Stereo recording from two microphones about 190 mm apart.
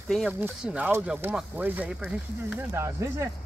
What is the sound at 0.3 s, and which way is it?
Speech, 5° right (ahead or behind).